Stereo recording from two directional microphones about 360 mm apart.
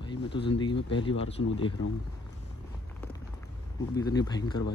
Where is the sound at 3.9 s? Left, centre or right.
Centre.